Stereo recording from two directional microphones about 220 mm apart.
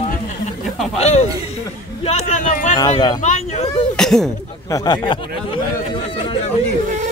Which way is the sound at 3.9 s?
Centre (ahead or behind).